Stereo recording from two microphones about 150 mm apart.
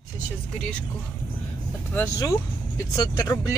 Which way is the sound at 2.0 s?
20° left (ahead or behind).